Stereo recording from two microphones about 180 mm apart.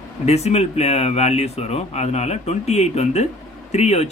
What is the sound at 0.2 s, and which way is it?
A man's voice, 35° left (ahead or behind).